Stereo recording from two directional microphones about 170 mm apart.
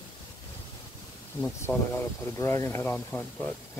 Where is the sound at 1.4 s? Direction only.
10° left (ahead or behind).